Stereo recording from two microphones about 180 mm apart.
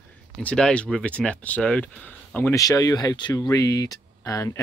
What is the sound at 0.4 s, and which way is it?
Speech, 5° left (ahead or behind).